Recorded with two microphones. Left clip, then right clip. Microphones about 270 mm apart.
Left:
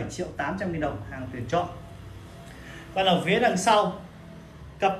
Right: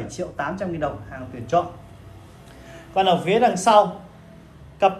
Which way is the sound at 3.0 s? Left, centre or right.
Centre.